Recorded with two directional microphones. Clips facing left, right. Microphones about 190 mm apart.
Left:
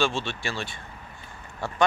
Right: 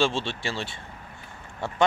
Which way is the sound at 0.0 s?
25° right (ahead or behind).